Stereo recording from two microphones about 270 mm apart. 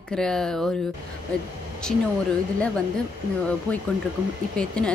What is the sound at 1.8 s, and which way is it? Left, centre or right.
Speech, centre.